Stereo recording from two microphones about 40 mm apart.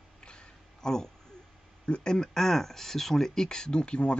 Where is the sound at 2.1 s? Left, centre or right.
Centre.